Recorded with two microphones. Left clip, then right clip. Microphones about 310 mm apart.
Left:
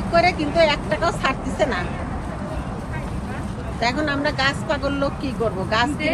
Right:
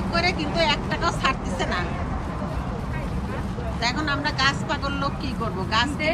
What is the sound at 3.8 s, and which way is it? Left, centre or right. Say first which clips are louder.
Speech: left 4 dB; centre.